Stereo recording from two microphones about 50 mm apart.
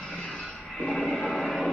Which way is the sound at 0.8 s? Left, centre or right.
Centre.